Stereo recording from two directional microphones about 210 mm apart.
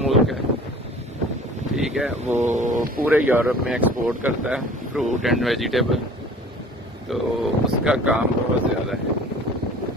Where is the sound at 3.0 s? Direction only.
10° right (ahead or behind).